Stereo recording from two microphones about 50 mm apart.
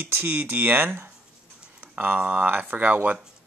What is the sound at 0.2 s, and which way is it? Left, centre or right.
Speech, right.